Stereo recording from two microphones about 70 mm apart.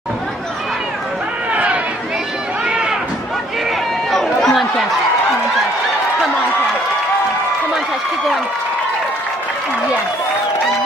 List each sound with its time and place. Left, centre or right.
1.5 s chatter: centre
4.1 s chatter: centre